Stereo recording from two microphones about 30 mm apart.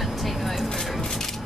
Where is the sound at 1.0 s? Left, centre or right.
Centre.